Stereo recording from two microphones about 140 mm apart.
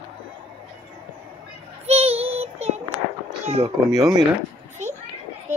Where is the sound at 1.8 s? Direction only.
45° right (ahead or behind).